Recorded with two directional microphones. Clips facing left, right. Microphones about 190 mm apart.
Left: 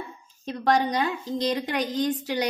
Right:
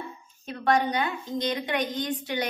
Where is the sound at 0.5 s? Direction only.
35° left (ahead or behind).